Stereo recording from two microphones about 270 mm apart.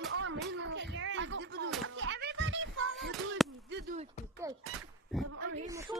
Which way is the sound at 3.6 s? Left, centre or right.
Right.